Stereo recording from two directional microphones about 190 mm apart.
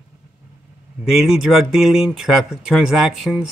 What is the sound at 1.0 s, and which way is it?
Speech, centre (ahead or behind).